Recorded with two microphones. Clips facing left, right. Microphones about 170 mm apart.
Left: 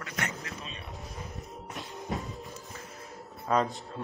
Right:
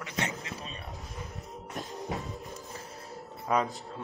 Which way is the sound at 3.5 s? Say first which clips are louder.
Left 1 dB; 5° right (ahead or behind).